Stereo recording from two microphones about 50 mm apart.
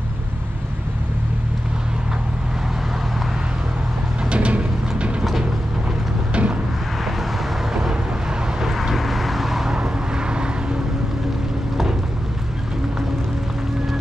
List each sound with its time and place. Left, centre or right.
4.3 s music: right
6.3 s vehicle: right
7.7 s vehicle: centre
9.8 s vehicle: centre